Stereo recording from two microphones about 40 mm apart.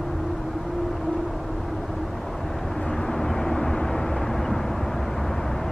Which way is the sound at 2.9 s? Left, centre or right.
Centre.